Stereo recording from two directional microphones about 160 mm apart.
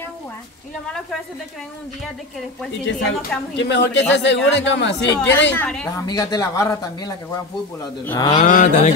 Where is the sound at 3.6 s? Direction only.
90° left.